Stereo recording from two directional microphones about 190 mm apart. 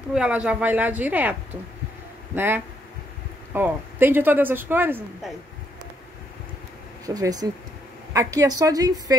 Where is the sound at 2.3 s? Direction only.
10° right (ahead or behind).